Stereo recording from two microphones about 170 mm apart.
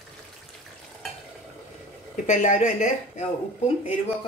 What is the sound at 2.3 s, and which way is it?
Speech, 45° left (ahead or behind).